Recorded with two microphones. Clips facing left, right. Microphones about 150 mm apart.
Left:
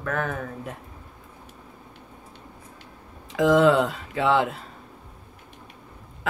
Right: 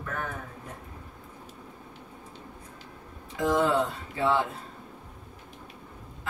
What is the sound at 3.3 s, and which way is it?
Speech, 90° left.